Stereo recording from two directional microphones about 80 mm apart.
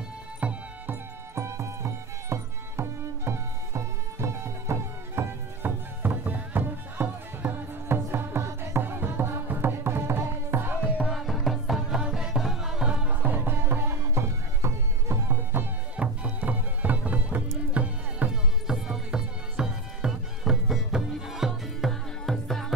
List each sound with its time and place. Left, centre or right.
0.4 s music: centre
1.3 s music: right
11.0 s music: centre
13.1 s music: right
16.0 s music: centre
18.3 s music: centre